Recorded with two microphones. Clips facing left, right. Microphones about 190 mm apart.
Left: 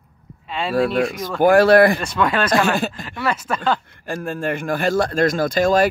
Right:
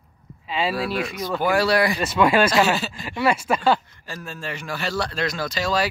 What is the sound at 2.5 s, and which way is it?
Speech, 55° left (ahead or behind).